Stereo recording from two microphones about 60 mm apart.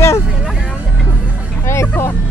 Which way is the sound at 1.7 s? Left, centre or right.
Left.